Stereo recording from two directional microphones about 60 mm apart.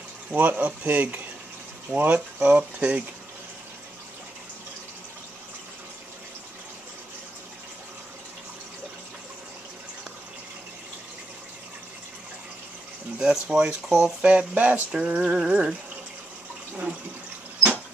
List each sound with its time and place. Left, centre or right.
0.3 s speech: right
13.2 s speech: centre
14.2 s speech: right